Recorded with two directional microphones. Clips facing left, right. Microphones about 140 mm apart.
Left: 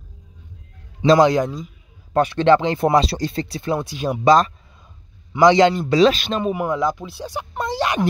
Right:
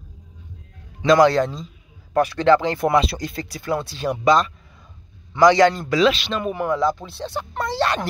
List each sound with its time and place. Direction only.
1.0 s speech: 25° left (ahead or behind)
1.3 s speech: 10° left (ahead or behind)
2.1 s speech: 25° left (ahead or behind)
2.9 s speech: 35° left (ahead or behind); by 4.1 s 15° left (ahead or behind)
4.2 s speech: 35° left (ahead or behind)
5.4 s speech: 20° left (ahead or behind)
5.9 s speech: 30° left (ahead or behind)
6.1 s speech: 45° left (ahead or behind)
6.5 s speech: 15° left (ahead or behind)